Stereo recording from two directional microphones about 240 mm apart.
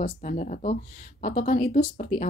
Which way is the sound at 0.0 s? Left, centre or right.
Left.